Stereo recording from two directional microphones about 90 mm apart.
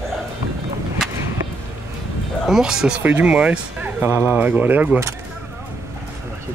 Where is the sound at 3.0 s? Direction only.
15° right (ahead or behind).